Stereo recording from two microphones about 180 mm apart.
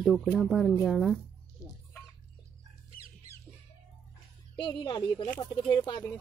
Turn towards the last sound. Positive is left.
turn(degrees=25)  # may be behind; listen again after turning